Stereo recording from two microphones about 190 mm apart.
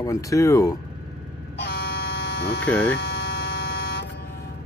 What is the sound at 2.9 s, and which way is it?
Hum, 65° left (ahead or behind).